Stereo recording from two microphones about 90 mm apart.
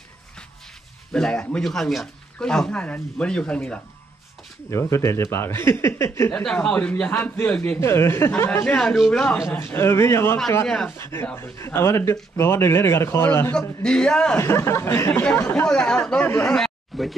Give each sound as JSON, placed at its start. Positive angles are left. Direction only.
{"t": 1.1, "sound": "a man's voice", "side_deg": 10}
{"t": 4.6, "sound": "speech", "side_deg": 30}
{"t": 6.3, "sound": "a man's voice", "side_deg": 10}
{"t": 7.8, "sound": "speech", "side_deg": 30}
{"t": 8.6, "sound": "speech", "side_deg": 5}
{"t": 9.6, "sound": "speech", "side_deg": 30}
{"t": 13.6, "sound": "a man's voice", "side_deg": 10}
{"t": 14.4, "sound": "speech", "side_deg": 30}
{"t": 15.6, "sound": "a man's voice", "side_deg": 10}
{"t": 16.4, "sound": "a sound", "side_deg": 5}